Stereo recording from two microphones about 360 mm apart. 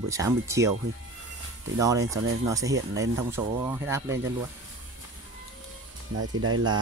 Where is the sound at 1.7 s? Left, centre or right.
Centre.